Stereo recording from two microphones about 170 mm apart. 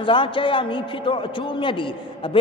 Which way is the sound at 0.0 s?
30° left (ahead or behind).